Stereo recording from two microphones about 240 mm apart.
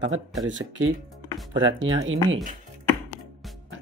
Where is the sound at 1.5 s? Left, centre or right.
Right.